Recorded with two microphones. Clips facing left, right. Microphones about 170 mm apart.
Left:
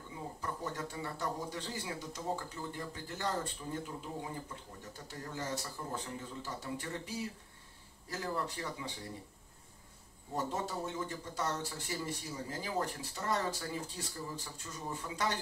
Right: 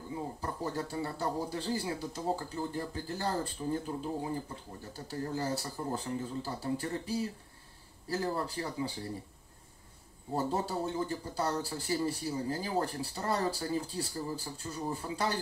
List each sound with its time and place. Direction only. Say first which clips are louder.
0.4 s speech: right 2 dB; 35° right (ahead or behind)
10.3 s speech: right 5 dB; 30° right (ahead or behind)